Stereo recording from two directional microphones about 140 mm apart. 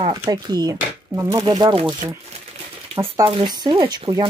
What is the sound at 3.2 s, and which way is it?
Speech, 35° right (ahead or behind).